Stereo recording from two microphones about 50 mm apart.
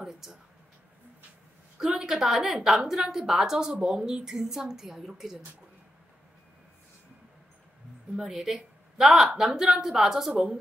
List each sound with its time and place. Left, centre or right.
0.0 s a sound: centre
1.8 s a woman's voice: centre
8.2 s a woman's voice: centre